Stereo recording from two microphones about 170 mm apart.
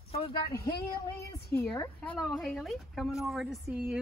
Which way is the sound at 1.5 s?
5° left (ahead or behind).